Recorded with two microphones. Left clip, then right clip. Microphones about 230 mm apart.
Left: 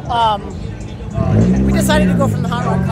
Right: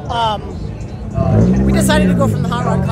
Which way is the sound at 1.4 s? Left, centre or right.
Centre.